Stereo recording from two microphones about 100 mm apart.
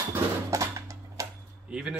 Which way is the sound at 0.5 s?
35° right (ahead or behind).